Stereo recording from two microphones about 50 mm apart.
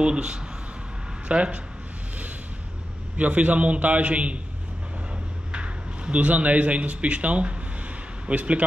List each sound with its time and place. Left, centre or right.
0.0 s a man's voice: centre
3.2 s a man's voice: right
5.5 s a man's voice: right